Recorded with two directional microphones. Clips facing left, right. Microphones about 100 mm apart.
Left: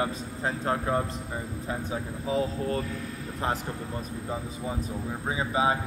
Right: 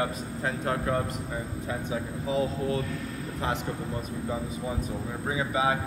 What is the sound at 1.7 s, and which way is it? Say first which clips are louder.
Speech: even; 35° left (ahead or behind).